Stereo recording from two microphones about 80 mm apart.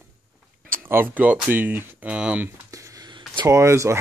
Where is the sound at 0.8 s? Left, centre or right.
Right.